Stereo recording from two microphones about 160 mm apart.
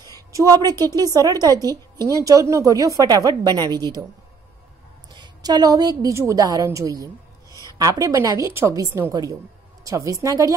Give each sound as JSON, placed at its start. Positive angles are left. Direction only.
{"t": 0.0, "sound": "a woman's voice", "side_deg": -20}
{"t": 5.1, "sound": "a woman's voice", "side_deg": -25}